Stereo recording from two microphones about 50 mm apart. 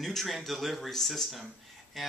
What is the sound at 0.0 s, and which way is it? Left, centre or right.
Speech, centre.